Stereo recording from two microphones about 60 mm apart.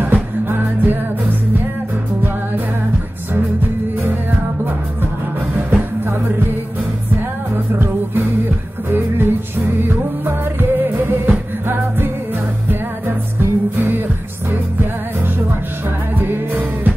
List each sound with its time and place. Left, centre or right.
0.0 s music: right
5.7 s music: right
7.5 s music: right